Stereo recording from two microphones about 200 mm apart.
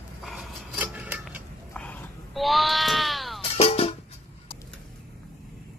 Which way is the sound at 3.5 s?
30° left (ahead or behind).